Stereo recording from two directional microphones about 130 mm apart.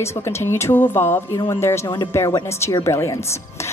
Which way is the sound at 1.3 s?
30° left (ahead or behind).